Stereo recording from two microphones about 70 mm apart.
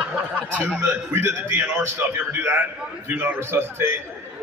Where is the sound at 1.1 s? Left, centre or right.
Right.